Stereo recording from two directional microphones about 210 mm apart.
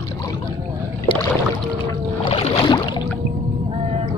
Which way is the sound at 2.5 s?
20° left (ahead or behind).